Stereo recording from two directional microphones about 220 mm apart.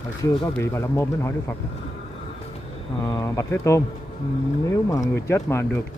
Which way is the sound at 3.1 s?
15° left (ahead or behind).